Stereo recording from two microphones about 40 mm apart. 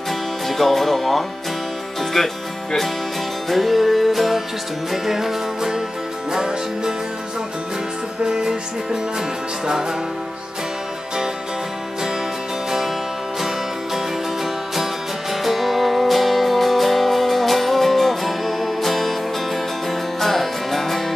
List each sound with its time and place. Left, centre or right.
0.5 s music: centre
8.2 s music: centre
13.9 s music: centre